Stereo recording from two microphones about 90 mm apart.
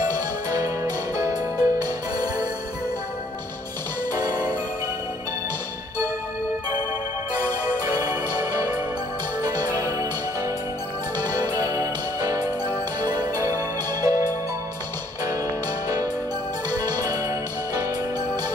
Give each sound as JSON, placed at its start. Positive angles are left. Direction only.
{"t": 0.5, "sound": "music", "side_deg": -45}
{"t": 8.0, "sound": "music", "side_deg": -30}
{"t": 9.4, "sound": "music", "side_deg": -45}
{"t": 11.6, "sound": "music", "side_deg": -35}
{"t": 16.7, "sound": "music", "side_deg": -45}